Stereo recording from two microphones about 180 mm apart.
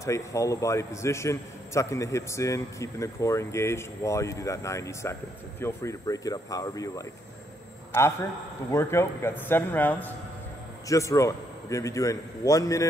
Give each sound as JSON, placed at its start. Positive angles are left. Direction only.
{"t": 0.0, "sound": "a man's voice", "side_deg": 15}